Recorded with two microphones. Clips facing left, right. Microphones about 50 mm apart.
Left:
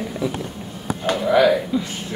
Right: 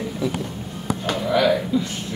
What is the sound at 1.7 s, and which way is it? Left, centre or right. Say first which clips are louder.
Speech: right 1 dB; centre.